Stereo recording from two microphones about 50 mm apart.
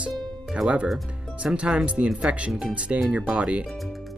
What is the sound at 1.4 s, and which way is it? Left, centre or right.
Speech, centre.